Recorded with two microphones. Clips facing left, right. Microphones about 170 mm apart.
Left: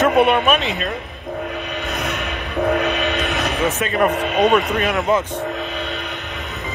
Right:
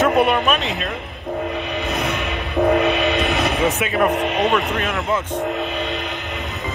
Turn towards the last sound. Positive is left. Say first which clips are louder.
# left 4 dB
turn(degrees=20)  # may be behind; listen again after turning